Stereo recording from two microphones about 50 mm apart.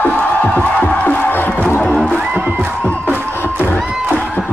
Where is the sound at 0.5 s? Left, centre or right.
Left.